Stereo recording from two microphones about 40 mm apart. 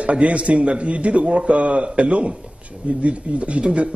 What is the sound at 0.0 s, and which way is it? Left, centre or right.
A man's voice, right.